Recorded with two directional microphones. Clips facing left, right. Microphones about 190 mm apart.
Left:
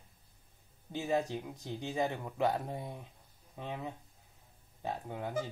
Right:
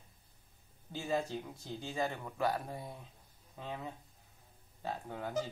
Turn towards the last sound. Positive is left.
turn(degrees=15)  # may be behind; listen again after turning